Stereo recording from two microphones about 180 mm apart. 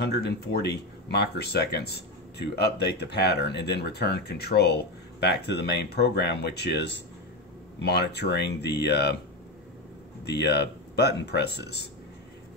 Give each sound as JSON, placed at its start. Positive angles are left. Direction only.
{"t": 0.0, "sound": "speech", "side_deg": 65}
{"t": 10.2, "sound": "speech", "side_deg": 70}